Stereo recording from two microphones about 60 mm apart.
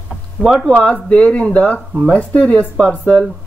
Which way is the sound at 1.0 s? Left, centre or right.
Centre.